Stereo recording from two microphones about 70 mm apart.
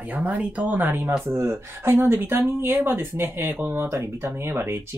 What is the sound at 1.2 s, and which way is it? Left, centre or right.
Speech, right.